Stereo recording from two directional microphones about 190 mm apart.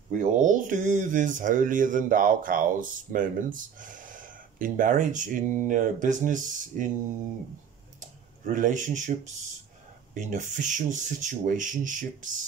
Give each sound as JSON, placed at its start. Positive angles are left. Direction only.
{"t": 0.1, "sound": "speech", "side_deg": -40}
{"t": 8.0, "sound": "speech", "side_deg": -40}